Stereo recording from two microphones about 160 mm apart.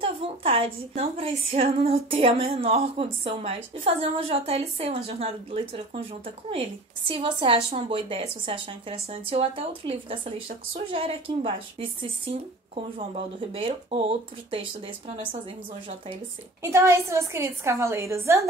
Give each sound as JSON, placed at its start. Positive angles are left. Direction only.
{"t": 0.0, "sound": "a woman's voice", "side_deg": -35}
{"t": 13.5, "sound": "a woman's voice", "side_deg": -35}
{"t": 16.6, "sound": "a woman's voice", "side_deg": -15}